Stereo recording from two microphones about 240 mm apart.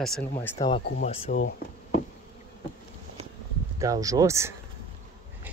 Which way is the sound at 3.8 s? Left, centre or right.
Centre.